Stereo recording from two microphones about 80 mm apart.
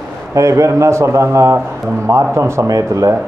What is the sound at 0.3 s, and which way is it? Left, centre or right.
Speech, right.